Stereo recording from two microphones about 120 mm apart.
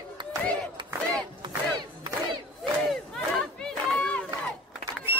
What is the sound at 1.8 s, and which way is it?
Crowd, 40° right (ahead or behind).